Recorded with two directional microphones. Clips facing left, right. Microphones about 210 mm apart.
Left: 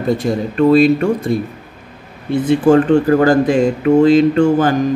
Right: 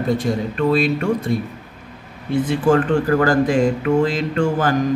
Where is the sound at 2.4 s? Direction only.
25° left (ahead or behind).